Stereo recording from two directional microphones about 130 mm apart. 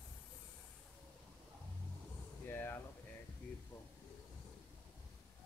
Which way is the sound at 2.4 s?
15° left (ahead or behind).